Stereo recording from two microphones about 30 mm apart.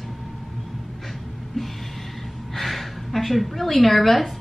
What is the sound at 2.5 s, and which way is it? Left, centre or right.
A woman's voice, centre.